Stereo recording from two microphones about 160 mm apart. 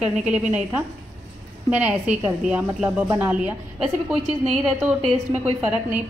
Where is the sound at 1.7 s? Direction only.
10° right (ahead or behind).